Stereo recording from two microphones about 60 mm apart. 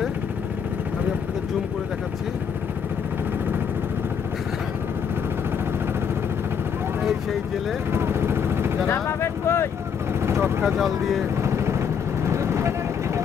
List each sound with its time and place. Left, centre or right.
7.9 s vehicle: right
9.0 s a sound: left
10.2 s vehicle: right
10.6 s speech: centre
11.4 s vehicle: right